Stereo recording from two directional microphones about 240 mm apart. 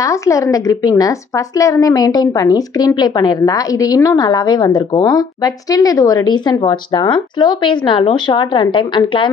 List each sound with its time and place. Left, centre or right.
0.0 s a woman's voice: centre